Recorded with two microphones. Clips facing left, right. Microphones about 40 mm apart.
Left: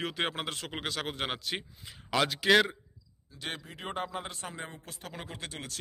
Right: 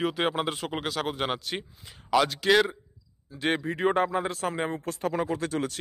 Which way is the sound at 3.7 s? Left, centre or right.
Right.